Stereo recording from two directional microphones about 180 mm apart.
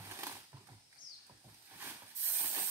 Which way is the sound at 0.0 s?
15° right (ahead or behind).